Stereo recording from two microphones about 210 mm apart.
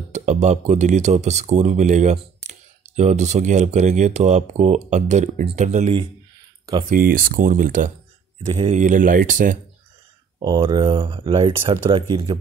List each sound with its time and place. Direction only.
0.1 s speech: 35° right (ahead or behind)
8.5 s speech: 30° right (ahead or behind)
10.4 s speech: 20° right (ahead or behind)